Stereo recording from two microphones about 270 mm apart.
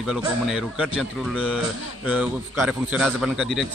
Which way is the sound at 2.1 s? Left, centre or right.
Centre.